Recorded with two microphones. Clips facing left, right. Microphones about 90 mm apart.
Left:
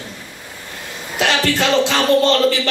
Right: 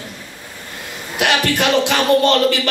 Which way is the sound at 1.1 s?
15° right (ahead or behind).